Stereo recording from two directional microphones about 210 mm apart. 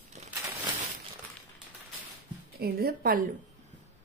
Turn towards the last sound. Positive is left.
turn(degrees=-45)  # may be behind; listen again after turning